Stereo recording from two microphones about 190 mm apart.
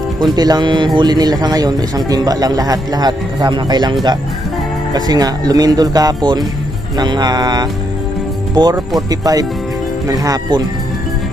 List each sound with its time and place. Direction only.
0.2 s speech: 20° right (ahead or behind)
4.9 s speech: 20° right (ahead or behind)